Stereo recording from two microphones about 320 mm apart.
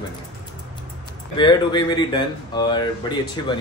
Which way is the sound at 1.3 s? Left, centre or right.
Centre.